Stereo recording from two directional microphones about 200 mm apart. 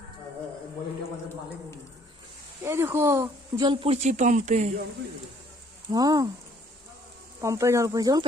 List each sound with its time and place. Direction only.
2.6 s speech: 15° right (ahead or behind); by 4.7 s 35° right (ahead or behind)
5.9 s speech: 20° right (ahead or behind)
7.3 s speech: 15° right (ahead or behind)